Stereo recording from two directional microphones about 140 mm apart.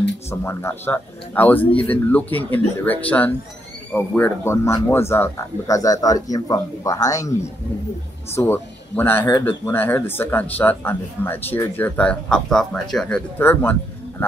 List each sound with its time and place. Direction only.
0.3 s speech: 20° left (ahead or behind); by 13.2 s 5° left (ahead or behind)
13.4 s speech: 15° left (ahead or behind)